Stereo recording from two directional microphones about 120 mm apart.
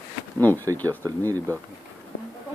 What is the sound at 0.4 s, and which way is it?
Speech, 15° left (ahead or behind).